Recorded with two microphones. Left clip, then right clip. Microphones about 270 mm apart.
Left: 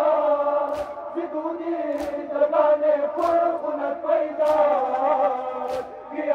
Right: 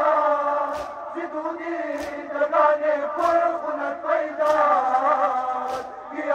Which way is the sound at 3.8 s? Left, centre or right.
Right.